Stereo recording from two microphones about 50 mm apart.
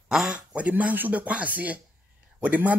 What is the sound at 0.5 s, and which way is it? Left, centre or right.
Speech, right.